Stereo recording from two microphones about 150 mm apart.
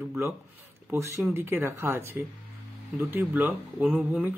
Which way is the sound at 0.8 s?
15° right (ahead or behind).